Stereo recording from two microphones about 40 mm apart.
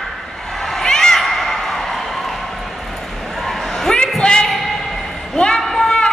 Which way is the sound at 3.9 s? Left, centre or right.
Left.